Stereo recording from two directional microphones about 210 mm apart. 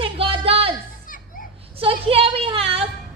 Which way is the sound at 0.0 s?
25° right (ahead or behind).